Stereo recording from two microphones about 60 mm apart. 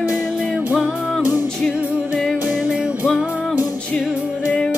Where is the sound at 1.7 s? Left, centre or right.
Right.